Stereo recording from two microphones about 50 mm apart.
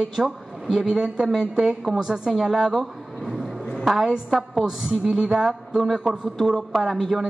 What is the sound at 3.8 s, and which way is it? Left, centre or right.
A man's voice, centre.